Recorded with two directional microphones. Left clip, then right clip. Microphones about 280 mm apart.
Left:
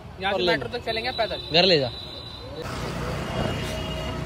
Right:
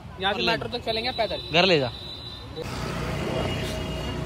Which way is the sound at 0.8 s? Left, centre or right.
Right.